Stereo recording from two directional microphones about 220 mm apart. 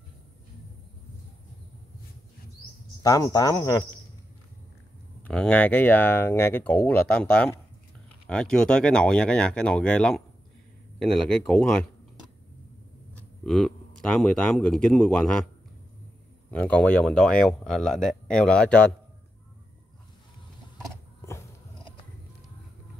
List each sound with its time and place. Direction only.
3.0 s speech: 15° left (ahead or behind)
5.2 s speech: 5° left (ahead or behind)
13.1 s speech: centre (ahead or behind)
16.4 s speech: 5° left (ahead or behind)